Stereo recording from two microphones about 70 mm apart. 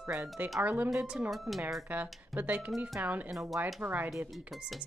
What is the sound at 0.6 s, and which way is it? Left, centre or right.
Speech, right.